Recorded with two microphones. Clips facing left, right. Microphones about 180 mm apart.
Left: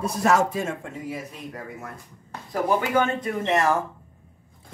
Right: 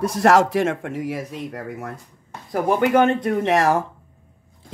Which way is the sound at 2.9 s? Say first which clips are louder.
Right 6 dB; 70° right (ahead or behind).